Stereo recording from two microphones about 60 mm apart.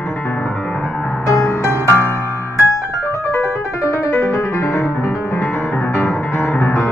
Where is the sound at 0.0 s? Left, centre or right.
Left.